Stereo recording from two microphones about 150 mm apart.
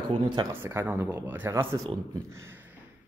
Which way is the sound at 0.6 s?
15° right (ahead or behind).